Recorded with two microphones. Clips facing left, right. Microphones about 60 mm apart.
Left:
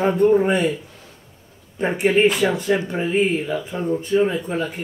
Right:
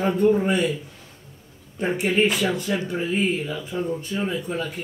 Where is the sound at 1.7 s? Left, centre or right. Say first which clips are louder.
Left 4 dB; left.